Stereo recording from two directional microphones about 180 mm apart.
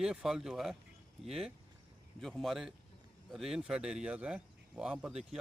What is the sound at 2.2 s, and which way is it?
Speech, centre (ahead or behind).